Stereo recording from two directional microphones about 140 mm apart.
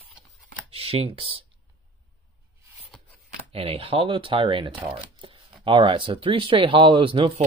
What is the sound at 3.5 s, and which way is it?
Speech, 45° right (ahead or behind).